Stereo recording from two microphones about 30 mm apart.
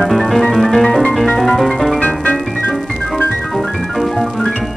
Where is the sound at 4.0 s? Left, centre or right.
Centre.